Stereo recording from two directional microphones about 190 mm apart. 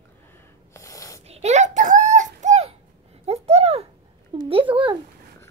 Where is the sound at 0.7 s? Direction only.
15° left (ahead or behind).